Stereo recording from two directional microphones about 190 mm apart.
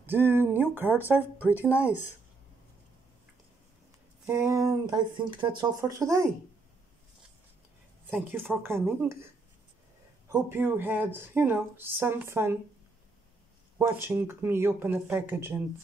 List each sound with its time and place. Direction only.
0.0 s speech: 10° right (ahead or behind)
1.6 s speech: 10° left (ahead or behind)
4.3 s speech: 15° right (ahead or behind)
8.1 s speech: 10° right (ahead or behind)
10.3 s speech: 10° right (ahead or behind)
13.7 s speech: 15° right (ahead or behind)